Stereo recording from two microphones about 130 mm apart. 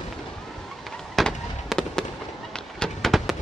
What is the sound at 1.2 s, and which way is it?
Fireworks, 5° left (ahead or behind).